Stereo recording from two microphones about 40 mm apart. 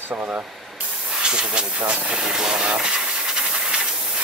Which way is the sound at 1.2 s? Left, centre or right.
Right.